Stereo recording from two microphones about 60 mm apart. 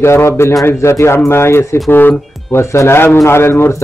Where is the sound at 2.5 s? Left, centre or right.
Left.